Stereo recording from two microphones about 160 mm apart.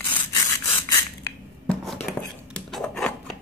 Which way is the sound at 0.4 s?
20° left (ahead or behind).